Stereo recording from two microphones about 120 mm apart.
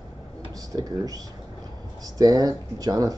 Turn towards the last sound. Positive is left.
turn(degrees=-30)  # may be behind; listen again after turning